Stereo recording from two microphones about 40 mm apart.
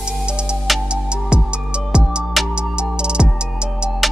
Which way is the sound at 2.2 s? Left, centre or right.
Centre.